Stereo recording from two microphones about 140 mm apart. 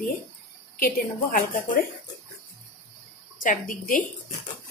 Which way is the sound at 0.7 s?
80° left.